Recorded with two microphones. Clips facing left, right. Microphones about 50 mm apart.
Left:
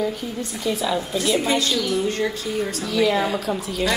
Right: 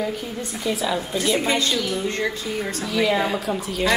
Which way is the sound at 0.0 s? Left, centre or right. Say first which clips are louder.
Left 1 dB; centre.